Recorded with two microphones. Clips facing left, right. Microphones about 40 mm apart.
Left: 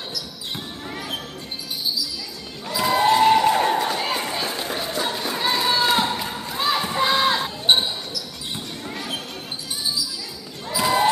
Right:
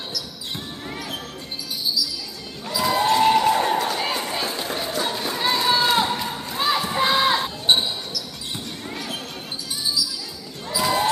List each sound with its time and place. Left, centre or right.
0.9 s basketball bounce: centre
2.7 s a sound: centre
7.6 s basketball bounce: centre
10.7 s basketball bounce: centre